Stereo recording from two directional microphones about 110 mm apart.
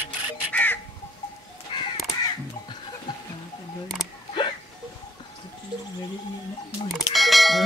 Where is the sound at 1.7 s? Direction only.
50° left (ahead or behind).